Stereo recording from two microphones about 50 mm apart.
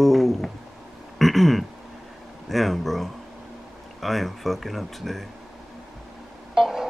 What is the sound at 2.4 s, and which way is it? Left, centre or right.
A man's voice, centre.